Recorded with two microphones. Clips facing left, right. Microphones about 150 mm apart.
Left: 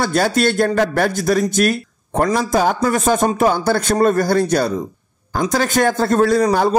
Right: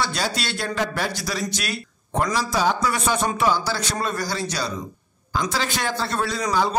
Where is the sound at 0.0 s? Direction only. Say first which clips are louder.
Left 10 dB; 50° left (ahead or behind).